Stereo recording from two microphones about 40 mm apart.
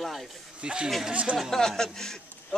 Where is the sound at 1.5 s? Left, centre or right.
Centre.